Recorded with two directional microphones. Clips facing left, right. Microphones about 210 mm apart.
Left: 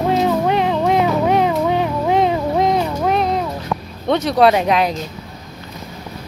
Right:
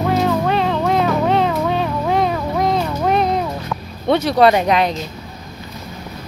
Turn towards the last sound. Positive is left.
turn(degrees=0)  # may be behind; listen again after turning